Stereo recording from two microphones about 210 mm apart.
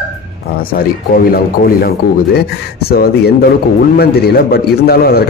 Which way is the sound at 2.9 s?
45° left (ahead or behind).